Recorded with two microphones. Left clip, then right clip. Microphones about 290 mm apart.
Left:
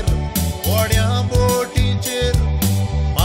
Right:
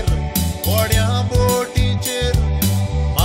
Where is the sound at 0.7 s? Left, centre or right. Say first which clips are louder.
Even; centre.